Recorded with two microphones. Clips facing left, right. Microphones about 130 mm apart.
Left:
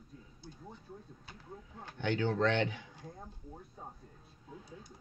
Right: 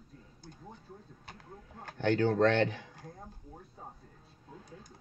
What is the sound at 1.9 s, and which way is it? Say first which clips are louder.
Speech: right 5 dB; 45° right (ahead or behind).